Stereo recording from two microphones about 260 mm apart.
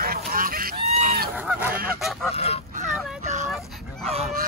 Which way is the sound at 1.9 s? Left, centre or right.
Centre.